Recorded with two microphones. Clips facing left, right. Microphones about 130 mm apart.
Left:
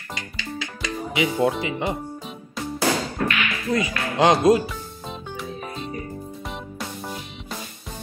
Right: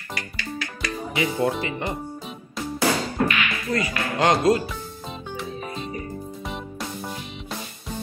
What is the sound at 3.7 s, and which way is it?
Speech, 15° left (ahead or behind).